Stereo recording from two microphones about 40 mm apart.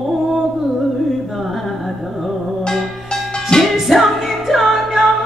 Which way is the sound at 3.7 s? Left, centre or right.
Centre.